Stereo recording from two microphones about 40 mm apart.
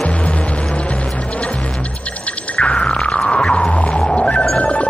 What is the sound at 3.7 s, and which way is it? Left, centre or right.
Music, left.